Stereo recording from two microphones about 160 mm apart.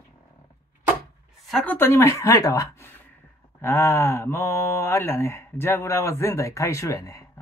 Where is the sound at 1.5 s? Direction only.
10° left (ahead or behind).